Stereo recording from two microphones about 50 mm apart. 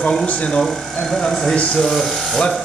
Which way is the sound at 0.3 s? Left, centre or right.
Left.